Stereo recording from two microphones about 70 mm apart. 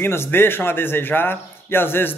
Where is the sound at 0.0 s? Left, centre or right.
Left.